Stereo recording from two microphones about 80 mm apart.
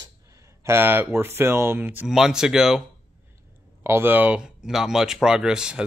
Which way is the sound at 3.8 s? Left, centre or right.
Right.